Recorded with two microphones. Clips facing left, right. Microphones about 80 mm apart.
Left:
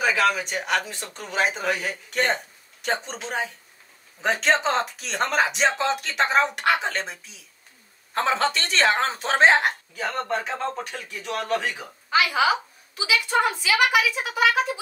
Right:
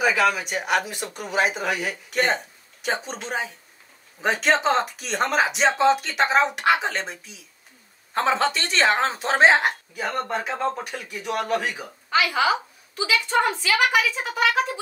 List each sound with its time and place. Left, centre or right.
0.0 s speech: centre
12.1 s a woman's voice: centre